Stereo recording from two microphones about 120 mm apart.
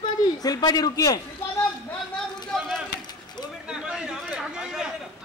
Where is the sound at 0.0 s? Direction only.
35° left (ahead or behind).